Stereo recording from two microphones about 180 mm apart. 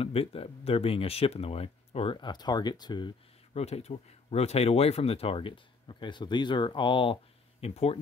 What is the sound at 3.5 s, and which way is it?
A man's voice, 35° left (ahead or behind).